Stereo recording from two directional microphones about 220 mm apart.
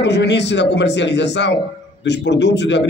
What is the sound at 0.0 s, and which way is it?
A man's voice, 55° left (ahead or behind).